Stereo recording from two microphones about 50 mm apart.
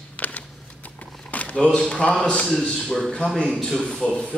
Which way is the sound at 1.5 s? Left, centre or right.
Left.